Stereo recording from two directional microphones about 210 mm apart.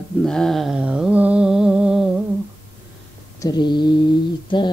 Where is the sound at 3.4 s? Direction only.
20° left (ahead or behind).